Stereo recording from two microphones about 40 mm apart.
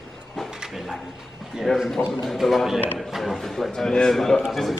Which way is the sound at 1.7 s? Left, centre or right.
Centre.